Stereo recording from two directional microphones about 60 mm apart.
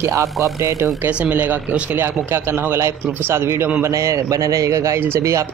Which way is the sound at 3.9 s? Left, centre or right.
Right.